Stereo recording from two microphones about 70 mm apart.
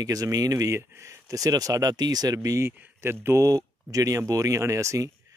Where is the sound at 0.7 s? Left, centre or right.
Right.